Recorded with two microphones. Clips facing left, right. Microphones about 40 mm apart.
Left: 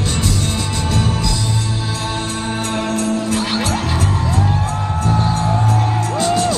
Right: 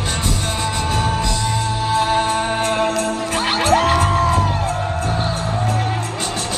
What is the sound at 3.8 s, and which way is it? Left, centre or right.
Music, right.